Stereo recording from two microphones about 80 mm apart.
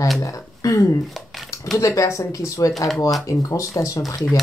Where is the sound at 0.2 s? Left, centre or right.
Left.